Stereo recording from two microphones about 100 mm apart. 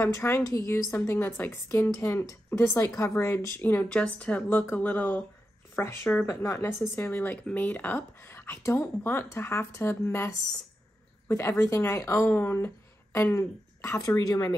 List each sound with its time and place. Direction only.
0.0 s speech: 25° left (ahead or behind)
0.9 s speech: 25° left (ahead or behind)
6.2 s speech: 30° left (ahead or behind)